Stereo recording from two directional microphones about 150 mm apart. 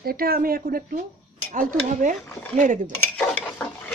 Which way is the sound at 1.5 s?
60° right (ahead or behind).